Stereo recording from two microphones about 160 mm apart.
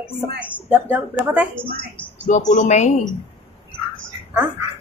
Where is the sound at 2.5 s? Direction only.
50° left (ahead or behind).